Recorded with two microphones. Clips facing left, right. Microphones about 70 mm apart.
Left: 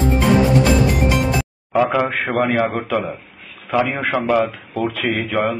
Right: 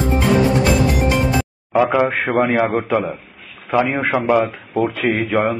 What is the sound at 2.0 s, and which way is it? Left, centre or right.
Speech, centre.